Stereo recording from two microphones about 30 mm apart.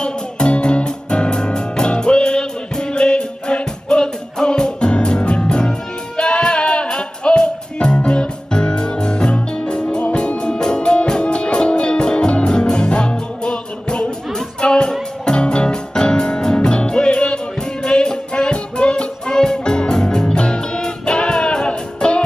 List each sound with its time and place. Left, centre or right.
0.0 s music: left
15.3 s music: left
19.2 s music: left
20.3 s music: left
21.6 s music: left